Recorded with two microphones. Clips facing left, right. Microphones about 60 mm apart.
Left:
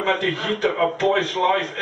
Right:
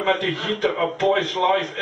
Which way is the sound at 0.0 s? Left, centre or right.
Centre.